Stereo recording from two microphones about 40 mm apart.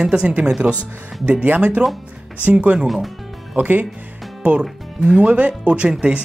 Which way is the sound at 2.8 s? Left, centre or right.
Centre.